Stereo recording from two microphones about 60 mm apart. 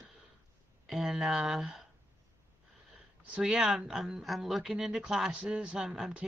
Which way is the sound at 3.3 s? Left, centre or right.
Centre.